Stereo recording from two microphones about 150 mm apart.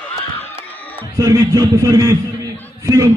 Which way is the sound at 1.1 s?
25° right (ahead or behind).